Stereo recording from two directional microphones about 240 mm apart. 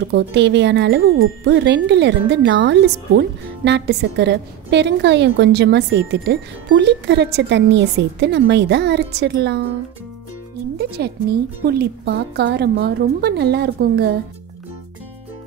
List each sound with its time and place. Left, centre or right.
0.1 s speech: right
11.0 s speech: right